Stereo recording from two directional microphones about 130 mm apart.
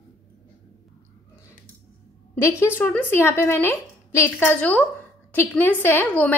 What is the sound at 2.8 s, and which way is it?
A woman's voice, 15° left (ahead or behind).